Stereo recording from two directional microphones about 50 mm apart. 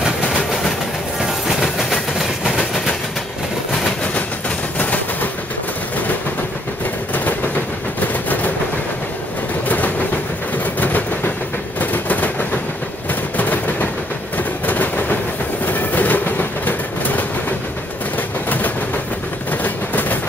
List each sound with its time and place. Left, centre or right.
4.7 s train: left
10.8 s train: left
11.8 s a sound: left
13.4 s a sound: left
14.7 s train: left
19.6 s train: left